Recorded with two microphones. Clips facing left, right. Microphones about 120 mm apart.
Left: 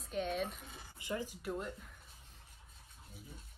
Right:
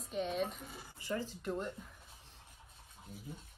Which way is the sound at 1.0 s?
15° left (ahead or behind).